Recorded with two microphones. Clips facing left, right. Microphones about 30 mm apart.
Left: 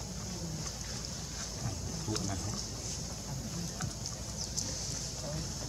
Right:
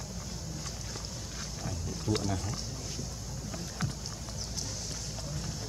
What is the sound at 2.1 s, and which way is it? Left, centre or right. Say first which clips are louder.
Speech: right 6 dB; centre.